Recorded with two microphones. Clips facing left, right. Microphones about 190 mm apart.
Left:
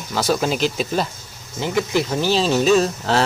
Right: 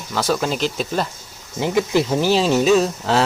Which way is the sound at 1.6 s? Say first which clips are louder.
Right 2 dB; 20° right (ahead or behind).